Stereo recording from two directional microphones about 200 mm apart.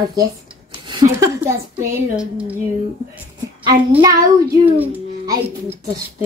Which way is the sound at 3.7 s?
15° right (ahead or behind).